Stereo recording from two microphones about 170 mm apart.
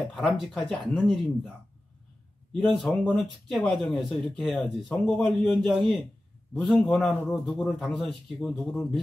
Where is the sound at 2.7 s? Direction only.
Centre (ahead or behind).